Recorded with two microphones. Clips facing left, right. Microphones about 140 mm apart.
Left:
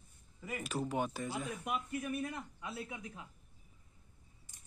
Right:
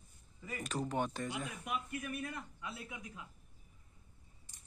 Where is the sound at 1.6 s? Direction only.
20° left (ahead or behind).